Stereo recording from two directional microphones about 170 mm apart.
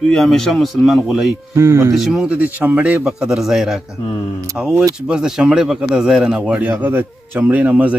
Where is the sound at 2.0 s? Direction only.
Centre (ahead or behind).